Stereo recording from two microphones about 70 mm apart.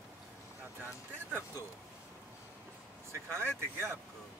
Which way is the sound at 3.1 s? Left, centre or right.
Right.